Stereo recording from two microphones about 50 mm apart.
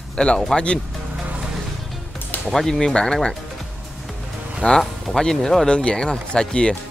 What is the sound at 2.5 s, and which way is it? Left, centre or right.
Speech, centre.